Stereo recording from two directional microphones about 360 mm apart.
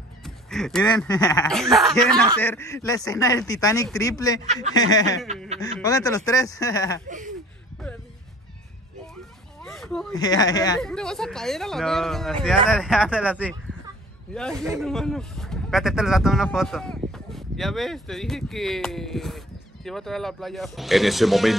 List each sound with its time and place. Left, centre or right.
0.2 s a sound: centre
0.8 s speech: centre
7.1 s speech: right
9.6 s speech: centre